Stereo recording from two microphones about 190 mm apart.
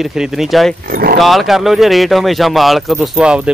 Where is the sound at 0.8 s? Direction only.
50° right (ahead or behind).